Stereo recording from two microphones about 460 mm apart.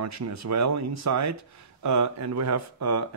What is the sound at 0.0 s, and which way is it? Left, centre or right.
Speech, right.